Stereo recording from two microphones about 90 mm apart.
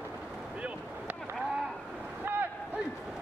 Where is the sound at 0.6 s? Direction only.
15° right (ahead or behind).